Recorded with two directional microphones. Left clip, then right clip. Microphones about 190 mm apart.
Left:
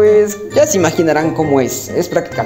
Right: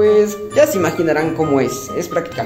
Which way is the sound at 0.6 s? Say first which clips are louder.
Left 2 dB; 40° left (ahead or behind).